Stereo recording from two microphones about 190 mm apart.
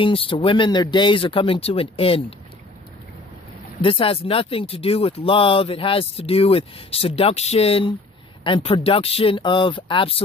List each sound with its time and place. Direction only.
0.0 s speech: 25° left (ahead or behind)
3.8 s speech: 30° left (ahead or behind)